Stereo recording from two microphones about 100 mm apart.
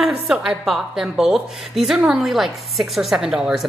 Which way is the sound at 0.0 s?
10° right (ahead or behind).